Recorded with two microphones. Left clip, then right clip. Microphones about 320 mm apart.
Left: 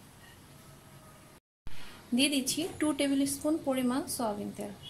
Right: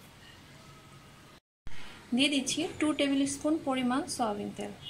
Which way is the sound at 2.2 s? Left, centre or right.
Centre.